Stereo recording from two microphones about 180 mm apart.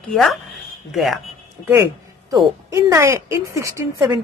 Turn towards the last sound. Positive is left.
turn(degrees=-15)  # may be behind; listen again after turning